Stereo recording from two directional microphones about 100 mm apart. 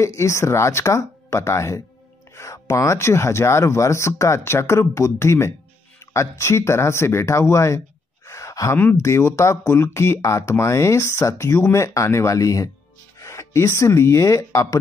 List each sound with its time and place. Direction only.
0.0 s speech: 30° left (ahead or behind)
8.3 s sigh: 30° left (ahead or behind)
8.9 s speech: 30° left (ahead or behind)